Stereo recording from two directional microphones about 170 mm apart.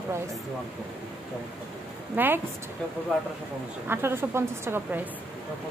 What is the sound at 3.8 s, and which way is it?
Speech, 15° right (ahead or behind).